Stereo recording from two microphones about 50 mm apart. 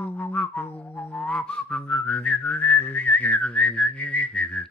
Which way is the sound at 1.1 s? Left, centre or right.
Left.